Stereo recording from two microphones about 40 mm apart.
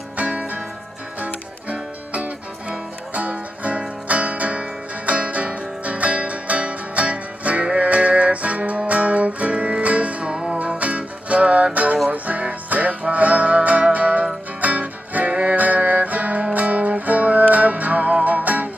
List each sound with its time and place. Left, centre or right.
0.2 s music: right
10.3 s music: right
10.6 s music: right